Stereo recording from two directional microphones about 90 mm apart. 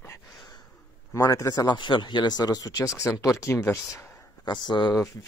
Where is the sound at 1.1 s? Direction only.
35° left (ahead or behind).